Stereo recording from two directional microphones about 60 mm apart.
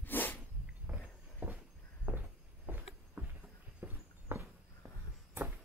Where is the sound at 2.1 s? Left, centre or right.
Right.